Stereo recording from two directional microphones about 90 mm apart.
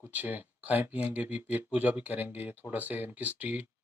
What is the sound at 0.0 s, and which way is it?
Speech, 20° right (ahead or behind).